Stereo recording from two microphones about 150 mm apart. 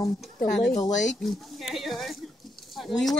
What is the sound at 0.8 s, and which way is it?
Speech, 55° left (ahead or behind).